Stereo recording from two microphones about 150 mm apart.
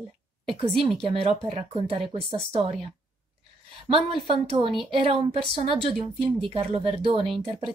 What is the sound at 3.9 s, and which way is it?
Speech, 35° right (ahead or behind).